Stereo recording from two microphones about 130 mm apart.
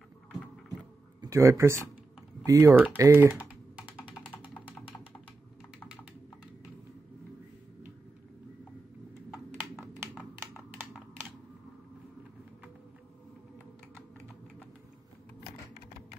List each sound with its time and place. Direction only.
1.2 s speech: 25° right (ahead or behind)
3.0 s typing: 20° right (ahead or behind)
9.3 s typing: 10° right (ahead or behind)